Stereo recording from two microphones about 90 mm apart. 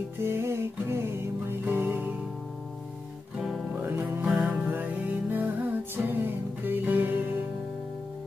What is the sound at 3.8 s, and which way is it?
Music, 20° right (ahead or behind).